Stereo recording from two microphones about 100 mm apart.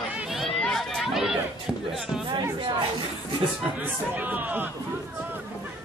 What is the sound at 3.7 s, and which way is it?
Speech, 15° right (ahead or behind).